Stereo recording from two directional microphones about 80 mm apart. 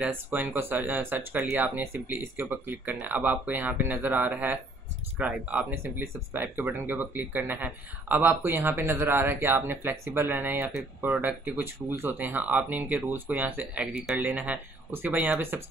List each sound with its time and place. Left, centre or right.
0.1 s speech: right
13.9 s speech: centre; by 15.6 s right